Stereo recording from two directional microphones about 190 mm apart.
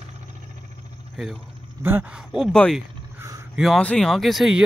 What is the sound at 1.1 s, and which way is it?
Speech, centre (ahead or behind).